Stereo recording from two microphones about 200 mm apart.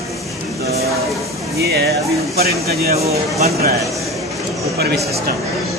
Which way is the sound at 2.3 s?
50° right (ahead or behind).